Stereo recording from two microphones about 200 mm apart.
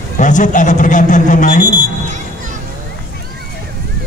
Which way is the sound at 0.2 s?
40° left (ahead or behind).